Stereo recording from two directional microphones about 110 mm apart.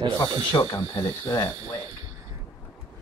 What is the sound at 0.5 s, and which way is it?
Speech, 35° left (ahead or behind).